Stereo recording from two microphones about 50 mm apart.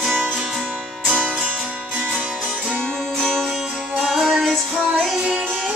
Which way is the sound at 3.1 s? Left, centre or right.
Centre.